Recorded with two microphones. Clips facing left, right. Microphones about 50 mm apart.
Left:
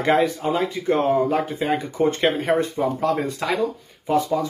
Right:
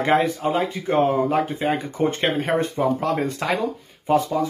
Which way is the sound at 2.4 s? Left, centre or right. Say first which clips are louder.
Even; right.